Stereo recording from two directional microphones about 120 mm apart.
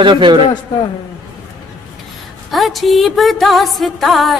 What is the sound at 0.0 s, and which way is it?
Speech, 40° right (ahead or behind).